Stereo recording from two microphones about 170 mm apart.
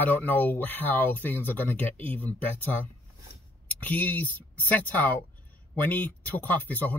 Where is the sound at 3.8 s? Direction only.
10° left (ahead or behind).